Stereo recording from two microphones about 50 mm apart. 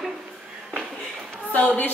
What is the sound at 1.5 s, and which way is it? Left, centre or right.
Speech, left.